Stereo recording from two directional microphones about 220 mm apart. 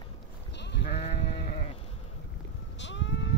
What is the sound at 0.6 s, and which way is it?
Sheep, 50° left (ahead or behind).